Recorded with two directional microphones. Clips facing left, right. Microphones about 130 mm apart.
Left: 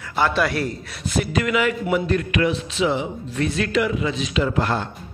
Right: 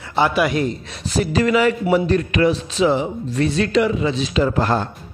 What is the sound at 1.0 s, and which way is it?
Speech, 35° right (ahead or behind).